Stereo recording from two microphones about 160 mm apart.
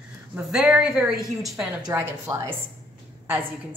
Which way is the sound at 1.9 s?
15° right (ahead or behind).